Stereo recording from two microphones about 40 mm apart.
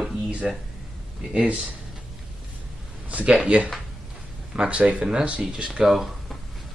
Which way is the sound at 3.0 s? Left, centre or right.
Right.